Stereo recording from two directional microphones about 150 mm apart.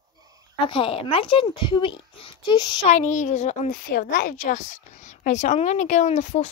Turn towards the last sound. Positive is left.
turn(degrees=50)  # may be behind; listen again after turning